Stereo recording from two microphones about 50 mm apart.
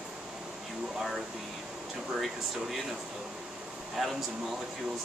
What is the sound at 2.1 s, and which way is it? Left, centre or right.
Speech, centre.